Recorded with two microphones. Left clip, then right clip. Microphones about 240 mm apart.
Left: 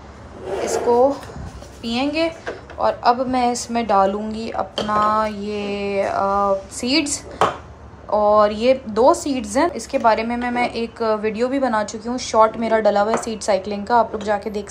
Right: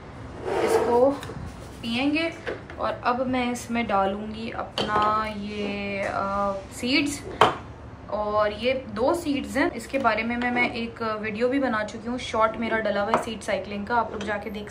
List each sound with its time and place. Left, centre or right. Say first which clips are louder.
1.8 s a woman's voice: left 5 dB; centre